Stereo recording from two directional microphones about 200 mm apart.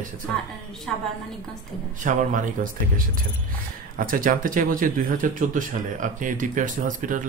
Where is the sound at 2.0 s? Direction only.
40° right (ahead or behind).